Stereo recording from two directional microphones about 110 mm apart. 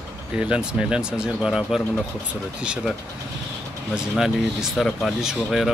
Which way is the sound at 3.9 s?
5° right (ahead or behind).